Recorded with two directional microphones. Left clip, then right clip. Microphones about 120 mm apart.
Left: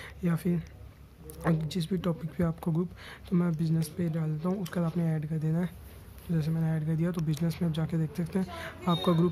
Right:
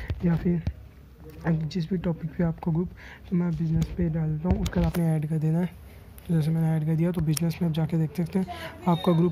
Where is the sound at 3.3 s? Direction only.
15° left (ahead or behind).